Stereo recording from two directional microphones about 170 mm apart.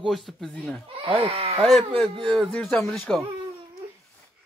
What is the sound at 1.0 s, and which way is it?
Speech, 30° right (ahead or behind).